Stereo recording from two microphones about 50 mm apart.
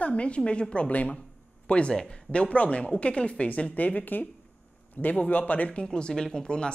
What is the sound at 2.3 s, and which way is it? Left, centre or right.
Speech, left.